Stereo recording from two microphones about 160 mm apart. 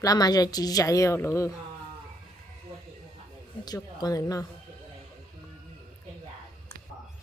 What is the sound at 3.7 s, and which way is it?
Speech, 25° left (ahead or behind).